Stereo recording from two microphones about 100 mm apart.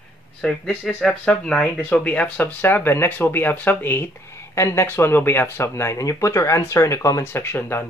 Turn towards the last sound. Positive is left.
turn(degrees=25)  # may be behind; listen again after turning